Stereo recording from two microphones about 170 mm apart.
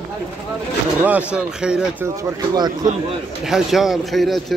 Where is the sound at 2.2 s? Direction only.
25° right (ahead or behind).